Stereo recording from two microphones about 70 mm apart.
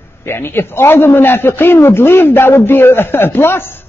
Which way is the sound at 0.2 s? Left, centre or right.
Left.